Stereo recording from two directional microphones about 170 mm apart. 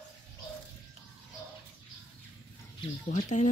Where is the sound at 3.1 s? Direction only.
45° left (ahead or behind).